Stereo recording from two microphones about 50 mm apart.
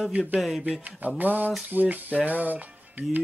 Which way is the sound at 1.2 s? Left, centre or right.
Right.